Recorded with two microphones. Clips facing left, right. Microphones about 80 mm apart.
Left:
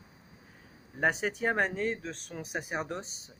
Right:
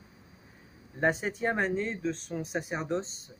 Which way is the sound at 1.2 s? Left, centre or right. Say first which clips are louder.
Even; left.